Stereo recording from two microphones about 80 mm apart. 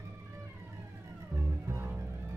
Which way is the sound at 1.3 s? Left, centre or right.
Right.